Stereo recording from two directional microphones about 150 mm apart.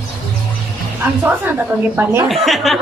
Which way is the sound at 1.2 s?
10° right (ahead or behind).